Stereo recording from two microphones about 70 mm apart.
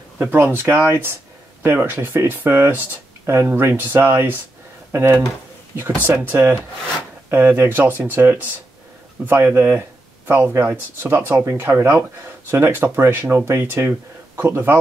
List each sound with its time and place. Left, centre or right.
0.2 s speech: right